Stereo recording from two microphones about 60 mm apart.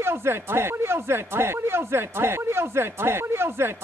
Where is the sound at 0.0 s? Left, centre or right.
Right.